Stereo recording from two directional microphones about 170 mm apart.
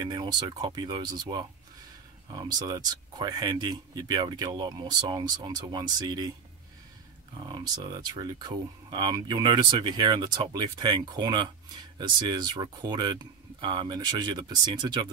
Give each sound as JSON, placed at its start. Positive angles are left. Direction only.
{"t": 0.0, "sound": "speech", "side_deg": -25}
{"t": 7.3, "sound": "speech", "side_deg": -25}